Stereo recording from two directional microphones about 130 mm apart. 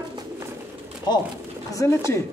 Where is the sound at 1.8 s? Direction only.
20° left (ahead or behind).